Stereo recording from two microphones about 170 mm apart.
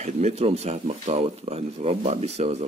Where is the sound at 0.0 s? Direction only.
40° right (ahead or behind).